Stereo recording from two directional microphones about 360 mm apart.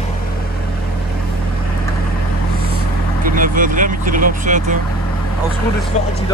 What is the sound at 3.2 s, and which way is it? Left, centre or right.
Vehicle, right.